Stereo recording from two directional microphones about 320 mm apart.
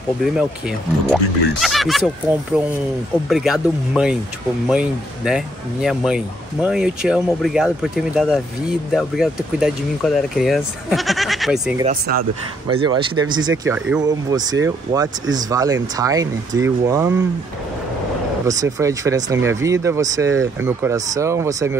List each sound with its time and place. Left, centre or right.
0.2 s speech: centre
11.8 s speech: right
12.6 s speech: centre
18.6 s speech: centre